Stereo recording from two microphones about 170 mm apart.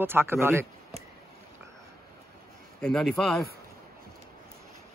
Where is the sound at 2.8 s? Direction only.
5° left (ahead or behind).